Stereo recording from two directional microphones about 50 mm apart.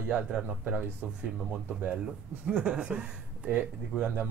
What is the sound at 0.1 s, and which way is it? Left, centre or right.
Speech, right.